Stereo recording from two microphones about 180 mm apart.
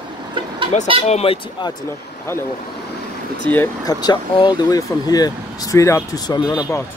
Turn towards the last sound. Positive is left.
turn(degrees=20)  # may be behind; listen again after turning